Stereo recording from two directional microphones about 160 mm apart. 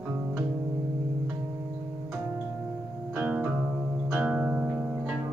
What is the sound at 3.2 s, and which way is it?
Music, 5° right (ahead or behind).